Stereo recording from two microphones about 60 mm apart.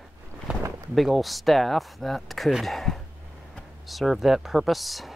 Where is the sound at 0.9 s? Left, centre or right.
Centre.